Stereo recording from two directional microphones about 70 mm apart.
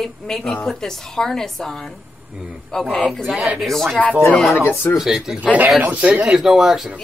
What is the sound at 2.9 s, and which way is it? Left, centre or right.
Speech, centre.